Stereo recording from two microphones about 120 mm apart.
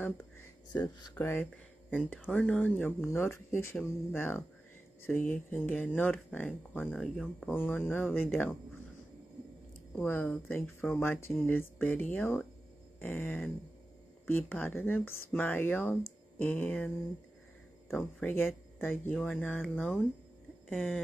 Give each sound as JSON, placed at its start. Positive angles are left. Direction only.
{"t": 0.7, "sound": "speech", "side_deg": 35}
{"t": 1.2, "sound": "speech", "side_deg": 15}
{"t": 7.5, "sound": "speech", "side_deg": 15}
{"t": 9.9, "sound": "speech", "side_deg": 15}
{"t": 20.6, "sound": "a sound", "side_deg": 10}